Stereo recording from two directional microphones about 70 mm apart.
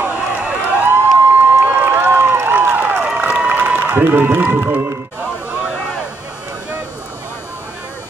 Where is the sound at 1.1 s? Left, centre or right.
Right.